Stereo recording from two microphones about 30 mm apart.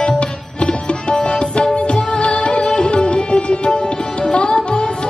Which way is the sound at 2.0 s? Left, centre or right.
Left.